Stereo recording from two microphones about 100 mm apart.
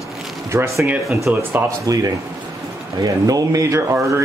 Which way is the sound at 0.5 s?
30° right (ahead or behind).